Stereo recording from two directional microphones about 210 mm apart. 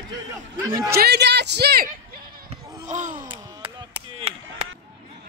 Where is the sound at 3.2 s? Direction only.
20° right (ahead or behind).